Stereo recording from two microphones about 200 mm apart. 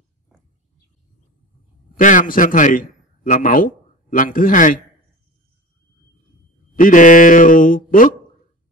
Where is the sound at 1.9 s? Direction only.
40° left (ahead or behind).